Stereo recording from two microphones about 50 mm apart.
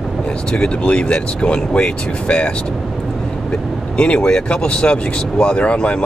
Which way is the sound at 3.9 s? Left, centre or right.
Left.